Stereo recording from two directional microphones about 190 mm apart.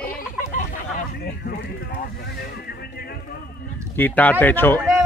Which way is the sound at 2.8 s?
55° left (ahead or behind).